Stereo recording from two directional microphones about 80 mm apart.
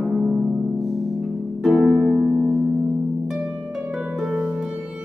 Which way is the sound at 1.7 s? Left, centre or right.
Right.